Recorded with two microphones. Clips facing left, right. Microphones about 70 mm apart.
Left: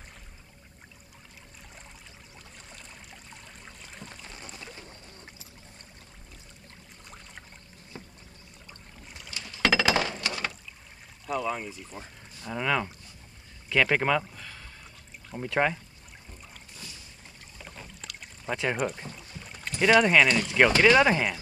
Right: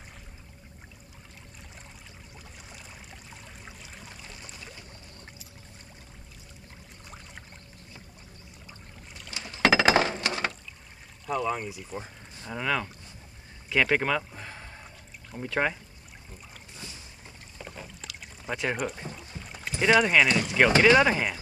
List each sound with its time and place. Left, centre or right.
2.3 s trickle: centre
9.3 s a sound: right
11.2 s speech: centre
11.9 s pour: centre
12.4 s speech: centre
14.3 s pour: right
15.4 s speech: centre
17.6 s pour: centre
19.1 s boat: centre
20.0 s speech: centre